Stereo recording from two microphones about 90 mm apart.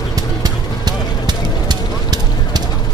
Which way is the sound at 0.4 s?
50° right (ahead or behind).